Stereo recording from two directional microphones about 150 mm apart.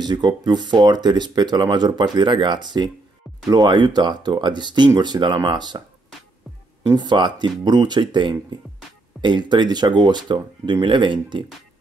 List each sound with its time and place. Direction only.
0.0 s speech: 30° right (ahead or behind)
6.9 s speech: 30° right (ahead or behind)